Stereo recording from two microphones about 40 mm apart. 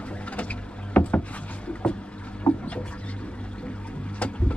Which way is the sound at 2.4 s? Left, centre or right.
Left.